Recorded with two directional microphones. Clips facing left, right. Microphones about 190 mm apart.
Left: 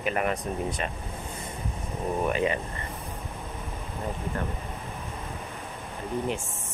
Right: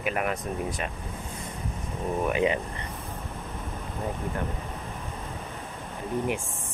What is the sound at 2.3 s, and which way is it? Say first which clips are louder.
Speech: right 2 dB; 15° right (ahead or behind).